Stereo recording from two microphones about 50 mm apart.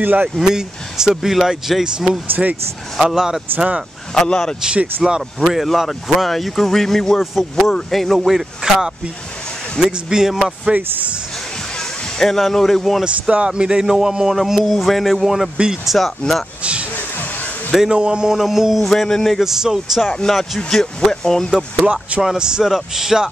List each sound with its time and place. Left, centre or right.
0.0 s speech: right
0.4 s speech: centre
4.1 s speech: centre
5.0 s speech: centre
12.2 s speech: centre
13.0 s speech: right; by 16.4 s centre
17.7 s speech: centre
18.9 s speech: centre
19.4 s speech: centre
20.2 s speech: centre
21.8 s speech: right
22.2 s speech: centre